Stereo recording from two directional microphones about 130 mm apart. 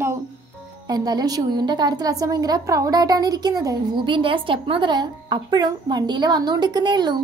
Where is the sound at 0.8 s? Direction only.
30° right (ahead or behind).